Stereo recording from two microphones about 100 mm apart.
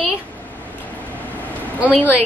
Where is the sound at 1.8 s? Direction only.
15° left (ahead or behind).